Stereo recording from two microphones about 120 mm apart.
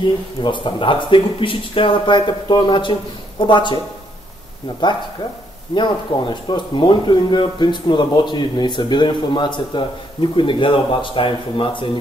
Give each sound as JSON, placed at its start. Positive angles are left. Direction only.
{"t": 0.0, "sound": "speech", "side_deg": 40}
{"t": 5.8, "sound": "speech", "side_deg": 40}